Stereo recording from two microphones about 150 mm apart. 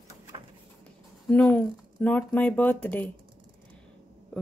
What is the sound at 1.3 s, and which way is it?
Speech, 10° left (ahead or behind).